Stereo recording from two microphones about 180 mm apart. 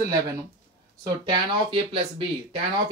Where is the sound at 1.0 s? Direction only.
25° right (ahead or behind).